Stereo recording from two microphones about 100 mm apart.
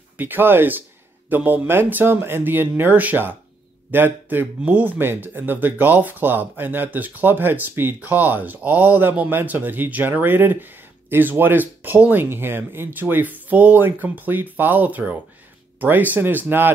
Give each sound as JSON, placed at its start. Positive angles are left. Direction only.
{"t": 0.2, "sound": "speech", "side_deg": -20}